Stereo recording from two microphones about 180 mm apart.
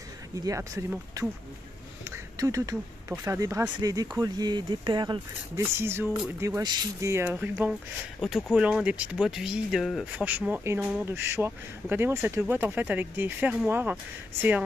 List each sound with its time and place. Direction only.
0.4 s speech: 15° right (ahead or behind)